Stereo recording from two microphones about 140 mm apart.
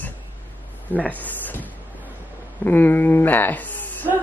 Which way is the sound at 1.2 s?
10° left (ahead or behind).